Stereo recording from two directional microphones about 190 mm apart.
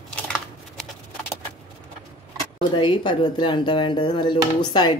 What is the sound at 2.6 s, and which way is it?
Speech, 25° left (ahead or behind).